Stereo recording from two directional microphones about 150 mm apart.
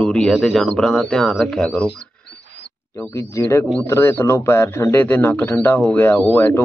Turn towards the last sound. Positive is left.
turn(degrees=10)  # may be behind; listen again after turning